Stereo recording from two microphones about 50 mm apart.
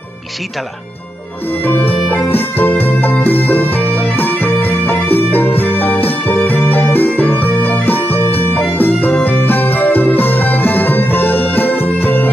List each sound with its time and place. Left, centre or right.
1.6 s music: left